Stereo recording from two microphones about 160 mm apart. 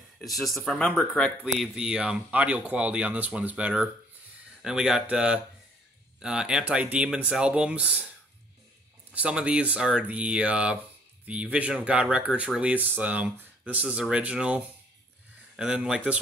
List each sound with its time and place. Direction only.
0.2 s speech: centre (ahead or behind)
1.4 s speech: 5° right (ahead or behind)
9.1 s speech: 5° right (ahead or behind)